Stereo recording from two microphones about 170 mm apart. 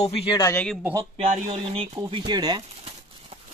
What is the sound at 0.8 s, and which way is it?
Speech, 20° right (ahead or behind).